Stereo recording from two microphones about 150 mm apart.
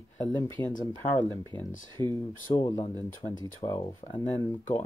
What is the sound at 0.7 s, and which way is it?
Speech, 60° left (ahead or behind).